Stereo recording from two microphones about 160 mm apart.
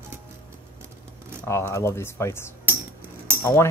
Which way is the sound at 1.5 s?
15° left (ahead or behind).